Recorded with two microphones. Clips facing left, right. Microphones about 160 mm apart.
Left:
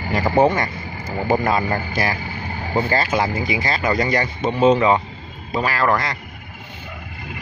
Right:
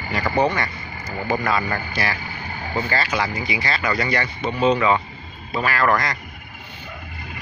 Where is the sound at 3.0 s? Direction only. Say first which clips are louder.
Left 4 dB; 45° left (ahead or behind).